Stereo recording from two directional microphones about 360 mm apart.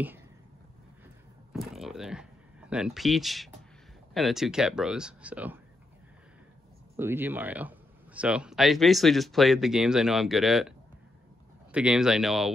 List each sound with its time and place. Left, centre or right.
1.5 s a sound: centre
4.1 s speech: centre
7.0 s speech: centre
11.7 s speech: centre